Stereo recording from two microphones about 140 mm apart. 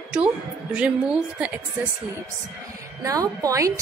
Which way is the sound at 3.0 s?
25° right (ahead or behind).